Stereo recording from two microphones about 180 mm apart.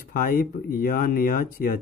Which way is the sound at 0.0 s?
55° left (ahead or behind).